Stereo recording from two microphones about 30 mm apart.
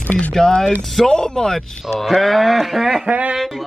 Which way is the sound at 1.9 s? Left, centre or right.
Centre.